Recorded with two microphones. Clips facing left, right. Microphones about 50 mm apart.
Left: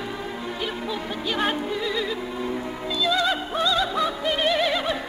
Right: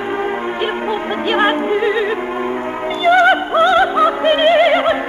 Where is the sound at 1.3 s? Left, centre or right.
Right.